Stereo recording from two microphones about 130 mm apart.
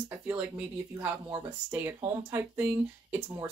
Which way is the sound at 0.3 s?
10° right (ahead or behind).